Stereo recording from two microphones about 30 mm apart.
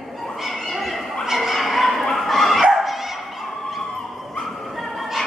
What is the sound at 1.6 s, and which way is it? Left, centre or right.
Bow-wow, centre.